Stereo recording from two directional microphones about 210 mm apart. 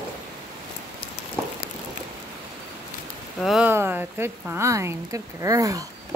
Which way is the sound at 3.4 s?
5° right (ahead or behind).